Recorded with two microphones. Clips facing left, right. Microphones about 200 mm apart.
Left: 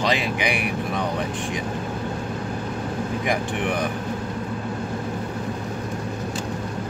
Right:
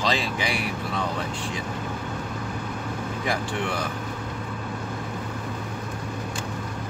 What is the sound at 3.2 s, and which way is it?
Speech, 15° left (ahead or behind).